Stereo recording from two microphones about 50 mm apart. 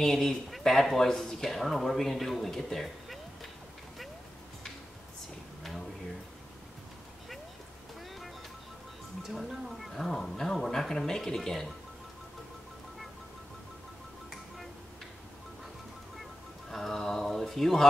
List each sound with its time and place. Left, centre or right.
0.0 s speech: centre
9.2 s speech: centre
16.7 s speech: centre